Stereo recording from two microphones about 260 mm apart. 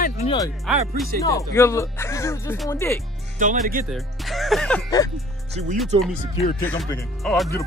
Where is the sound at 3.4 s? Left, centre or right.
Right.